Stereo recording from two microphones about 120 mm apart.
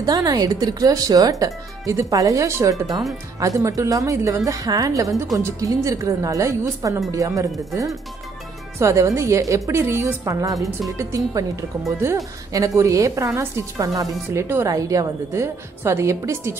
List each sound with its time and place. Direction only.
0.0 s speech: 30° right (ahead or behind)
8.7 s speech: 25° right (ahead or behind)
12.5 s speech: 25° right (ahead or behind)